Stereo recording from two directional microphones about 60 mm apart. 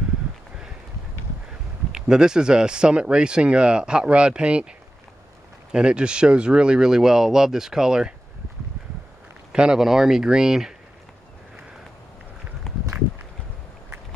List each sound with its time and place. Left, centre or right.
1.9 s speech: centre
5.7 s speech: centre
9.5 s speech: centre
12.7 s walk: centre